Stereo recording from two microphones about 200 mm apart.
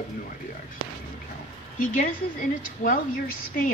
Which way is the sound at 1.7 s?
40° left (ahead or behind).